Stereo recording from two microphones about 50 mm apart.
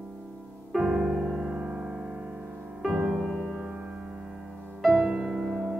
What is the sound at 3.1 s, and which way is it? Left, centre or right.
Music, centre.